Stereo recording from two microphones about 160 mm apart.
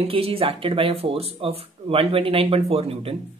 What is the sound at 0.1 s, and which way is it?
Speech, 35° right (ahead or behind).